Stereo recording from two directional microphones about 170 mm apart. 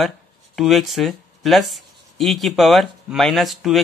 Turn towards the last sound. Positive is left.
turn(degrees=0)  # may be behind; listen again after turning